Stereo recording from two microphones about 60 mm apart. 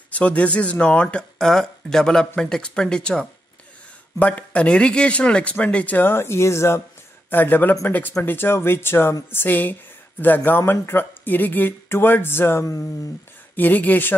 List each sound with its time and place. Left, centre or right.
0.1 s speech: left
5.9 s speech: left
7.2 s speech: left
13.6 s speech: left